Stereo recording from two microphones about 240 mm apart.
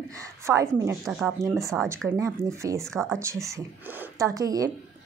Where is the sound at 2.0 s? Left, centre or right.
Centre.